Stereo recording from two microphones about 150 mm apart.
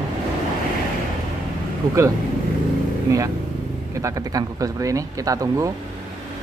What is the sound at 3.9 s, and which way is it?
Speech, 20° right (ahead or behind).